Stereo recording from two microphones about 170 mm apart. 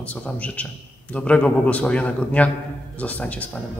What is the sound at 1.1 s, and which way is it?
A man's voice, 5° left (ahead or behind).